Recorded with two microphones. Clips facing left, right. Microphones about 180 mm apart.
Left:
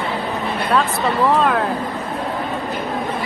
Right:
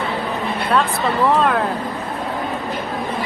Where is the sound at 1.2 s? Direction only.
Centre (ahead or behind).